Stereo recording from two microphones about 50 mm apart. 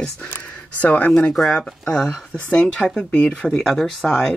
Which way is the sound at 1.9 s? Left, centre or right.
Centre.